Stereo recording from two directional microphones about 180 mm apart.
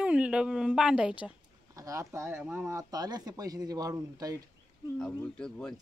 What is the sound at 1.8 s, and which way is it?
Speech, 15° right (ahead or behind).